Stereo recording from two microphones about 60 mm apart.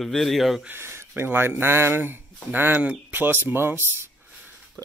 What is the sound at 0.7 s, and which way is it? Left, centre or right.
Speech, right.